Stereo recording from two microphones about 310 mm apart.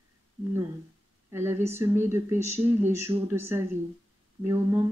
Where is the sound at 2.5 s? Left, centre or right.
Centre.